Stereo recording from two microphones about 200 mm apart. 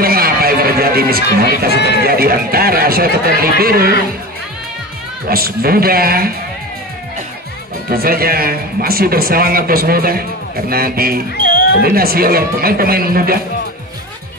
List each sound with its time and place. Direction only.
0.0 s a sound: 50° right (ahead or behind)
2.0 s speech: 50° right (ahead or behind)
5.3 s speech: 50° right (ahead or behind)
7.9 s speech: 50° right (ahead or behind)